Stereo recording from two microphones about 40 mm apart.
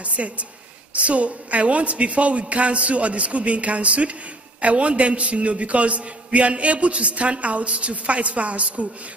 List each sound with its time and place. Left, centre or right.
0.0 s a woman's voice: right